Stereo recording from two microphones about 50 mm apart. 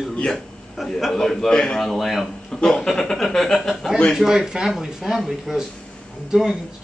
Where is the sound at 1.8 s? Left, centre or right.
Centre.